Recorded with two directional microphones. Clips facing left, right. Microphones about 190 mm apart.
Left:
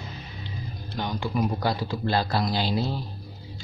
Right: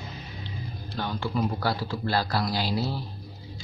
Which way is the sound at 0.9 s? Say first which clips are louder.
Left 1 dB; 15° left (ahead or behind).